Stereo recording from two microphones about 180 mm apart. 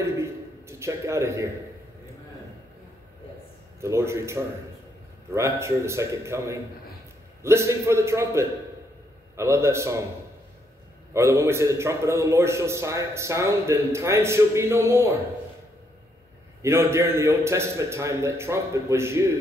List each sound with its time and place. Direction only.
0.0 s a sound: 15° right (ahead or behind)
3.8 s a man's voice: 15° right (ahead or behind)
11.1 s a man's voice: 15° right (ahead or behind)
16.6 s a man's voice: 15° right (ahead or behind)